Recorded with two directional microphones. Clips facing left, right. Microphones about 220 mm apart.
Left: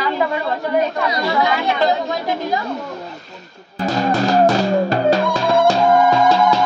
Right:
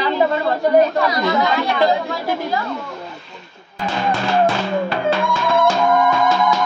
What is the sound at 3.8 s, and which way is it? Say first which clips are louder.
Music: left 4 dB; 40° left (ahead or behind).